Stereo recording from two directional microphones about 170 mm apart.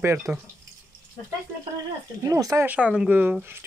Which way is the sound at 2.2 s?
20° right (ahead or behind).